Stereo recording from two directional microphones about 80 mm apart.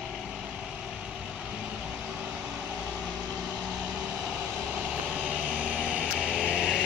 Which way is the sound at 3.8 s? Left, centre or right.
Centre.